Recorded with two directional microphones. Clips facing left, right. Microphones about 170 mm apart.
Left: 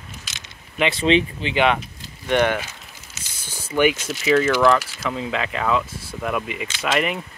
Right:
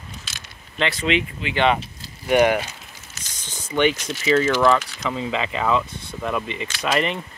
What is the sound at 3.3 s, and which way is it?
Speech, 10° left (ahead or behind).